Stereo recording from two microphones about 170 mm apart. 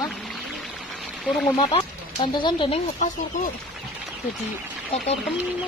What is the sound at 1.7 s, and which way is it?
Speech, 25° left (ahead or behind).